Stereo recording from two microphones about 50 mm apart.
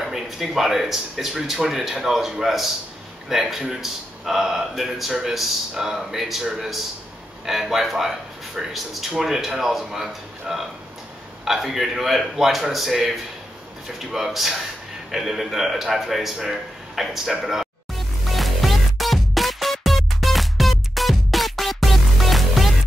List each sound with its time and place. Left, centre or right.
0.0 s a man's voice: centre
7.4 s a man's voice: centre
17.9 s music: centre